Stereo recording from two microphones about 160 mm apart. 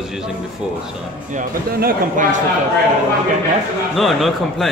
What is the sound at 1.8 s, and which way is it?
Speech, 60° right (ahead or behind).